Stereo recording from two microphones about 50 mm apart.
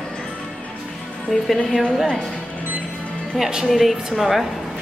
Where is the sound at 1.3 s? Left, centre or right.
Centre.